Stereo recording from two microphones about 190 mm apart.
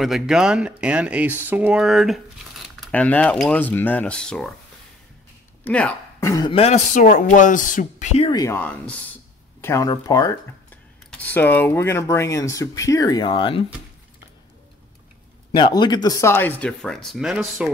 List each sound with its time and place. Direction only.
0.0 s speech: 5° right (ahead or behind)
5.6 s speech: 5° left (ahead or behind)
6.3 s speech: 25° left (ahead or behind)
8.3 s speech: 15° left (ahead or behind)
15.5 s speech: 25° left (ahead or behind); by 17.6 s centre (ahead or behind)